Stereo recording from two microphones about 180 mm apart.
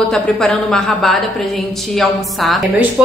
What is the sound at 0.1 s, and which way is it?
A woman's voice, 5° left (ahead or behind).